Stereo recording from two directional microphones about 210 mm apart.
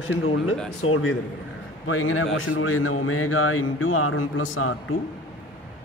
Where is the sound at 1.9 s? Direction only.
75° left (ahead or behind).